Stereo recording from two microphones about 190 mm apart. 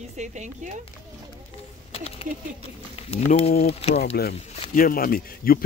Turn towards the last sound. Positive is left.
turn(degrees=50)  # may be behind; listen again after turning